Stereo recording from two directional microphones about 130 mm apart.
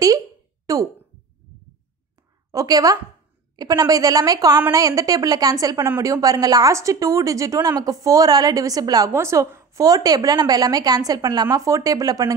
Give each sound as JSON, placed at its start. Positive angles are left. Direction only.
{"t": 0.7, "sound": "a sound", "side_deg": -25}
{"t": 2.5, "sound": "a woman's voice", "side_deg": -30}
{"t": 5.9, "sound": "speech", "side_deg": -15}
{"t": 6.2, "sound": "a woman's voice", "side_deg": -30}